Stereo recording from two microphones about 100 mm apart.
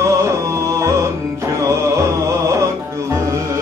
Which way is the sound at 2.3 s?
30° right (ahead or behind).